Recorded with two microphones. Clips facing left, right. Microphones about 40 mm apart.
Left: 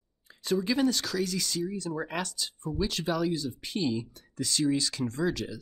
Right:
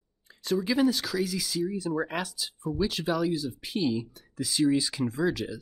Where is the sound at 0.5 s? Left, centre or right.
Centre.